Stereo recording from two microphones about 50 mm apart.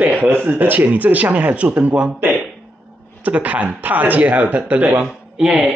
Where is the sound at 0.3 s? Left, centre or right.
Right.